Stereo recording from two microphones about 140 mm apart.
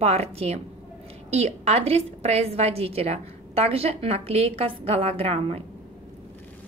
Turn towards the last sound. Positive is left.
turn(degrees=-45)  # may be behind; listen again after turning